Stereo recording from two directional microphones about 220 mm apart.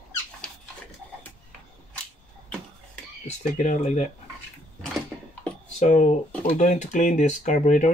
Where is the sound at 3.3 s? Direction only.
35° left (ahead or behind).